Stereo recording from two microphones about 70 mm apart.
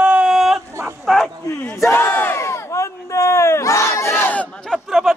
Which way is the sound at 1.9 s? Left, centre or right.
Left.